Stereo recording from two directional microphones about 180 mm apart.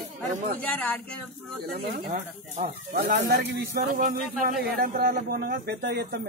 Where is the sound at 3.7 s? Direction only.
50° right (ahead or behind).